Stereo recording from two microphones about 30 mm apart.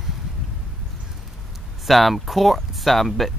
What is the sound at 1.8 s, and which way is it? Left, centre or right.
Speech, centre.